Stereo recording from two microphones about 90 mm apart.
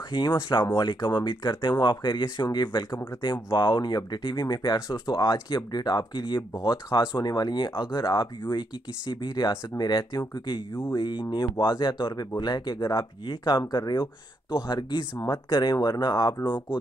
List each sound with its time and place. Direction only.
0.1 s speech: 60° left (ahead or behind)
5.0 s speech: 40° left (ahead or behind)
12.9 s speech: 65° left (ahead or behind)